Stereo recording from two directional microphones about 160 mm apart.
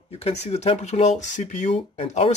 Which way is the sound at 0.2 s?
45° left (ahead or behind).